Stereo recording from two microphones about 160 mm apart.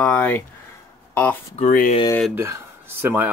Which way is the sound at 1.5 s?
55° left (ahead or behind).